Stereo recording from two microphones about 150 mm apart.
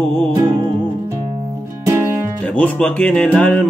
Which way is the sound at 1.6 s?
20° right (ahead or behind).